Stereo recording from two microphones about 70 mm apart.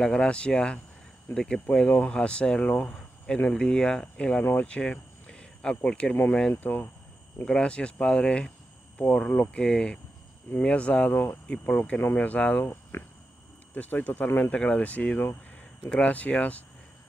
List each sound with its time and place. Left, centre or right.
0.0 s speech: centre
6.5 s speech: left
7.4 s speech: centre